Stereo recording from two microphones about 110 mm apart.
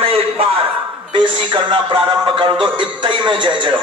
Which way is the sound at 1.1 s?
50° right (ahead or behind).